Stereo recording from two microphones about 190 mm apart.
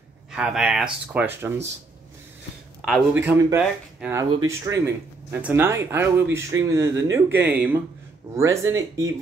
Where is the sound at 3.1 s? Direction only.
10° right (ahead or behind).